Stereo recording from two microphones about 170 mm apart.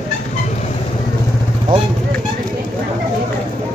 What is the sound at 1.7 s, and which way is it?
Speech, 55° right (ahead or behind).